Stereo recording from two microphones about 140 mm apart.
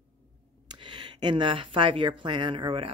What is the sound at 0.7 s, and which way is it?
Speech, 35° right (ahead or behind).